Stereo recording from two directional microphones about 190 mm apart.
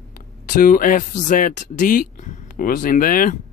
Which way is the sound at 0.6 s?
45° left (ahead or behind).